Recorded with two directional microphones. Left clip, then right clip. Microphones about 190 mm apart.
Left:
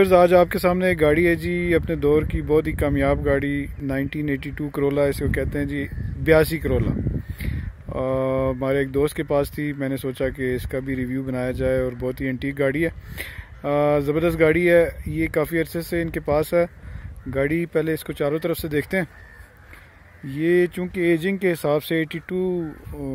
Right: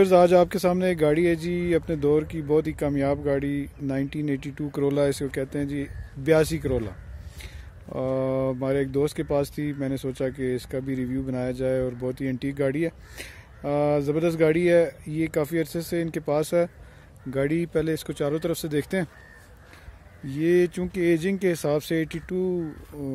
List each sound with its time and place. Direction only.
0.0 s speech: 10° right (ahead or behind)
7.9 s speech: 5° right (ahead or behind)
20.2 s speech: 5° right (ahead or behind)